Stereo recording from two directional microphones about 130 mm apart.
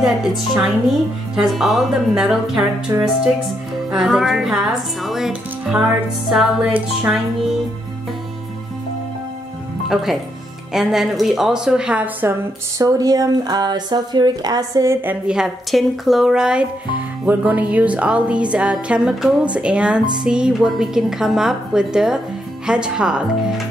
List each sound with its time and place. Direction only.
0.0 s a woman's voice: centre (ahead or behind)
6.7 s music: 10° right (ahead or behind)
10.7 s a woman's voice: 5° right (ahead or behind); by 14.9 s 30° right (ahead or behind)
14.9 s a woman's voice: 15° right (ahead or behind)
17.3 s music: 10° right (ahead or behind)
19.5 s a woman's voice: 10° right (ahead or behind)
22.7 s music: 5° right (ahead or behind)